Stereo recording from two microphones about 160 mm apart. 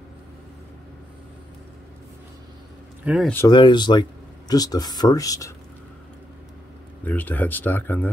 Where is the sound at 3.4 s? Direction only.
30° left (ahead or behind).